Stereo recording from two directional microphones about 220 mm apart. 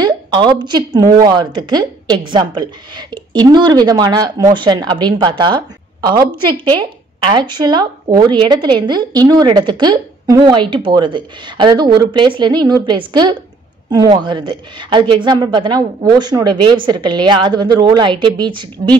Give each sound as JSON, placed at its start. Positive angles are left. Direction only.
{"t": 0.0, "sound": "a woman's voice", "side_deg": -20}